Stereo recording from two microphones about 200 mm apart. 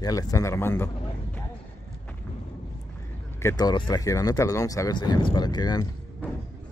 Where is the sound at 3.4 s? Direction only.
20° left (ahead or behind).